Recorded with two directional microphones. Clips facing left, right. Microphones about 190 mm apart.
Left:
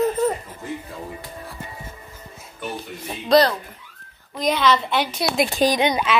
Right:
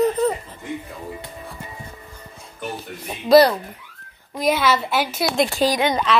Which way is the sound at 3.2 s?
10° right (ahead or behind).